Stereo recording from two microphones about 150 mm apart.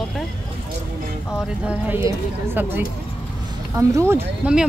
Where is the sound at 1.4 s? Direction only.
10° right (ahead or behind).